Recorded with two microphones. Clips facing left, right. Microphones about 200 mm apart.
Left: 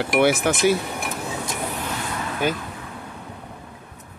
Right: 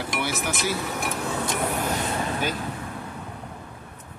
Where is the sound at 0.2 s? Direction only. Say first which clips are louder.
Left 11 dB; 65° left (ahead or behind).